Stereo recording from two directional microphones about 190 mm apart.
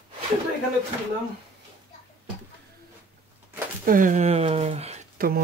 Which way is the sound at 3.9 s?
45° right (ahead or behind).